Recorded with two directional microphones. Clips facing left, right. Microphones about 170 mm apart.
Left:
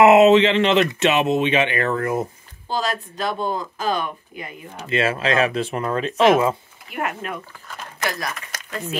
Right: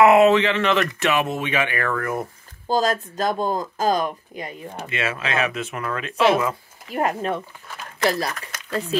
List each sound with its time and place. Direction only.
0.0 s speech: 20° left (ahead or behind)
2.7 s speech: 40° right (ahead or behind)
4.8 s speech: 30° left (ahead or behind)
6.9 s speech: 35° right (ahead or behind)